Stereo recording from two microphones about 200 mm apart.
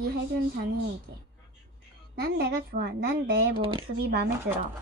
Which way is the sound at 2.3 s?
50° right (ahead or behind).